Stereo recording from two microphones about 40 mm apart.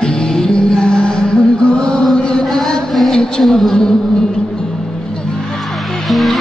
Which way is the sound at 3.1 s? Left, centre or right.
Left.